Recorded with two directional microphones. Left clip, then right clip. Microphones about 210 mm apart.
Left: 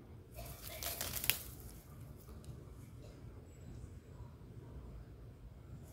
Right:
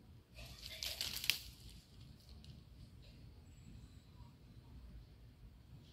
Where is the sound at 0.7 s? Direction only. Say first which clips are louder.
Right 1 dB; 35° left (ahead or behind).